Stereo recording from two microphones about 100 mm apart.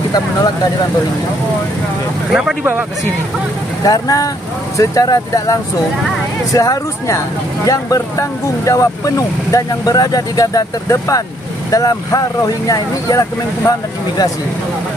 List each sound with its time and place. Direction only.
3.8 s speech: 35° left (ahead or behind)